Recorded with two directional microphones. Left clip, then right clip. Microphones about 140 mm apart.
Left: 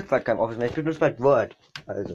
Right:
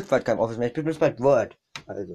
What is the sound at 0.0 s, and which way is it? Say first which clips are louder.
Speech: even; 30° right (ahead or behind).